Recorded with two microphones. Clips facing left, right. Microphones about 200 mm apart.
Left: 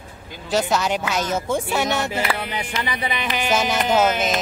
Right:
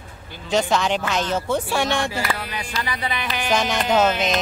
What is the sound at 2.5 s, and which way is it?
Speech, 20° left (ahead or behind).